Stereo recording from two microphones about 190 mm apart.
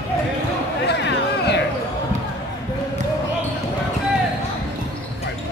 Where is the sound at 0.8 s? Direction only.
60° left (ahead or behind).